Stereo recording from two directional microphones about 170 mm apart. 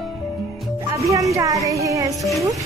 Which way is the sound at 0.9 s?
20° right (ahead or behind).